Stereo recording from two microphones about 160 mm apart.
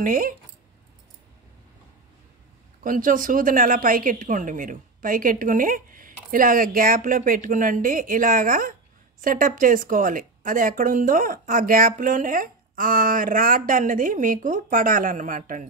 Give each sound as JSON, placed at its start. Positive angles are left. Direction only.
{"t": 0.0, "sound": "a woman's voice", "side_deg": -60}
{"t": 2.8, "sound": "a woman's voice", "side_deg": -60}